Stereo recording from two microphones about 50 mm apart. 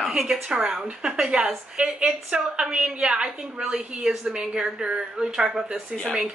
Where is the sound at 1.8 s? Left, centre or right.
Right.